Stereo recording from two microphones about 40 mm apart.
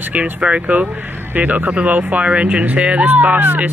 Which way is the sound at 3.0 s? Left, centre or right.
Right.